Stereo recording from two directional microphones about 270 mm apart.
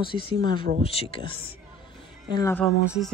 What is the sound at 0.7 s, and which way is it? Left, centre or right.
Speech, right.